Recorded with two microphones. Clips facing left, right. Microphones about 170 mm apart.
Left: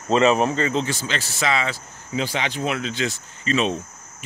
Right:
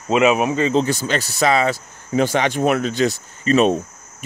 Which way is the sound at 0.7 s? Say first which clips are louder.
Right 6 dB; 40° right (ahead or behind).